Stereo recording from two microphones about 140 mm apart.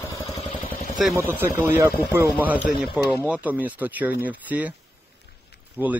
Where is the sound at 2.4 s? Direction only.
10° right (ahead or behind).